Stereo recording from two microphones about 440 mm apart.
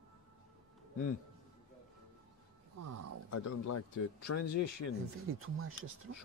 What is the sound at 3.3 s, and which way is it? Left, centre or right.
Speech, left.